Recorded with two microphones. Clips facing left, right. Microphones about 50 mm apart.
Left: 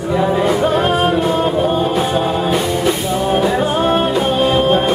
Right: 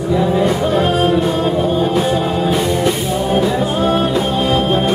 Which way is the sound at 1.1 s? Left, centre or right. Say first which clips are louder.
Even; centre.